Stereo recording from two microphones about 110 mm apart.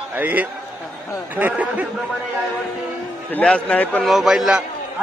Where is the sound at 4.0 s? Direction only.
Centre (ahead or behind).